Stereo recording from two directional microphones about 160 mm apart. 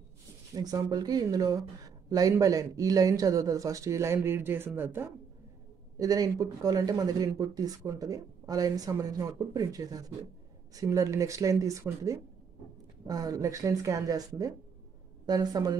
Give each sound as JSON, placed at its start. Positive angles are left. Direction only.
{"t": 0.6, "sound": "speech", "side_deg": -25}